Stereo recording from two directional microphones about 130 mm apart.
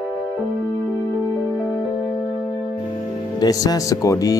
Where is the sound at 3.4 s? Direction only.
30° left (ahead or behind).